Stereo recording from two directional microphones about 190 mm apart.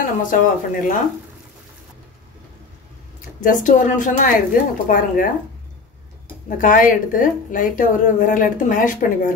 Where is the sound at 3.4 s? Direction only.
40° left (ahead or behind).